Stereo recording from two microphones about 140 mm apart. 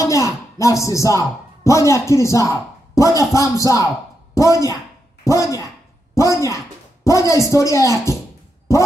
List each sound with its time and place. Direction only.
0.0 s a woman's voice: 20° left (ahead or behind)